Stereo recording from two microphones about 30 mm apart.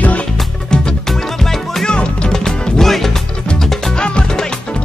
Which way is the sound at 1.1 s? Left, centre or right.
Centre.